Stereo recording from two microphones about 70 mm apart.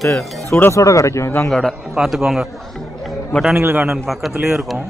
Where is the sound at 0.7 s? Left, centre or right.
Left.